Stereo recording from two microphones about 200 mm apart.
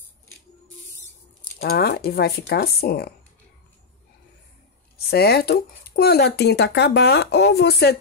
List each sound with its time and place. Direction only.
1.6 s speech: 50° left (ahead or behind)
4.9 s speech: 50° left (ahead or behind)